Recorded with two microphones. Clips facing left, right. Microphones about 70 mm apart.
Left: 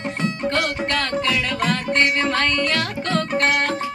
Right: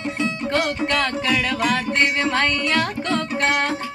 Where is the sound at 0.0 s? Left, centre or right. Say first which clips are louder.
Even; left.